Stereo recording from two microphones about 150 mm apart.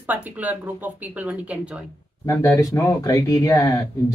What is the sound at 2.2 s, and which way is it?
Speech, 20° left (ahead or behind).